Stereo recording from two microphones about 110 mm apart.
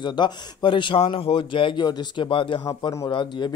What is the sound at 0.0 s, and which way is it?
Speech, 45° left (ahead or behind).